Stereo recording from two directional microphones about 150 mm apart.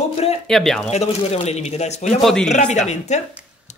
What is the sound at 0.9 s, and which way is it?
A man's voice, 45° left (ahead or behind).